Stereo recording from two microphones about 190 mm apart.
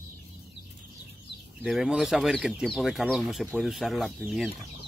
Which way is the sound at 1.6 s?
Centre (ahead or behind).